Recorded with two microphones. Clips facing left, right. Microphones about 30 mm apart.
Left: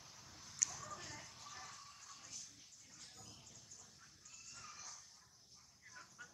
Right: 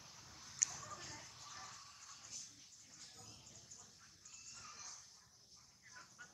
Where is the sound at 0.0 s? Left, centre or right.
Centre.